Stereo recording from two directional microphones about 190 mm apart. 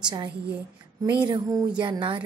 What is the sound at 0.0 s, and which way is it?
Speech, 20° right (ahead or behind).